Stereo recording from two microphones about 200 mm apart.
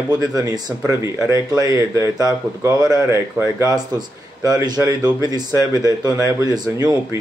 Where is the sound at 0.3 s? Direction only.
15° right (ahead or behind).